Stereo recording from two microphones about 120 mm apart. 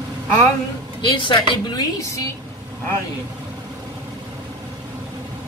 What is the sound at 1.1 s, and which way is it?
Speech, 40° left (ahead or behind).